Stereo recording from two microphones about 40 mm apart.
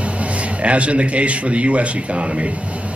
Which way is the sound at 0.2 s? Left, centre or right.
Right.